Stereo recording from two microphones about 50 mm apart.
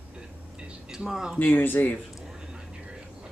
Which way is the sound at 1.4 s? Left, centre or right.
Left.